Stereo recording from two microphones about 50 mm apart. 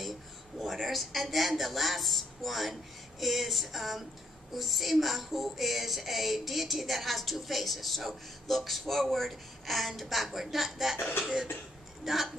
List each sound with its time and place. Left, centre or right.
0.6 s speech: centre
12.0 s speech: centre